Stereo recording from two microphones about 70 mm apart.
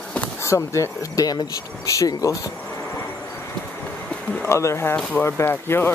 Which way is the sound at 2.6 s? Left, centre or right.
Left.